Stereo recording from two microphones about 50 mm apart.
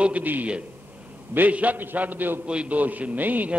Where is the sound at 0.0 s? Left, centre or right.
Right.